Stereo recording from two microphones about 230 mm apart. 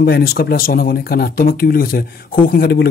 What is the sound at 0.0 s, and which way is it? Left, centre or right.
A man's voice, left.